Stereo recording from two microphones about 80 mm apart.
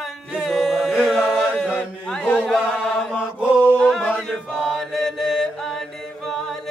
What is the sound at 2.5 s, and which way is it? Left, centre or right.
Chant, centre.